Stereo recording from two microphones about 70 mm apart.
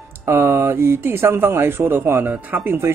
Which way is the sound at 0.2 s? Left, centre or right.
Right.